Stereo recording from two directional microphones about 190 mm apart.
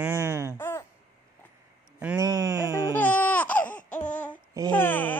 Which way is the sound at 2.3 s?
20° right (ahead or behind).